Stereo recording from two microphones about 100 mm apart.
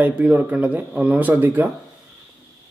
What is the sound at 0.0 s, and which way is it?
A man's voice, 15° right (ahead or behind).